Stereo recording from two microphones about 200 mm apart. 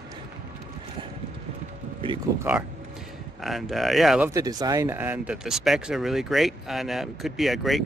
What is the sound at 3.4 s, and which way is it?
Speech, centre (ahead or behind).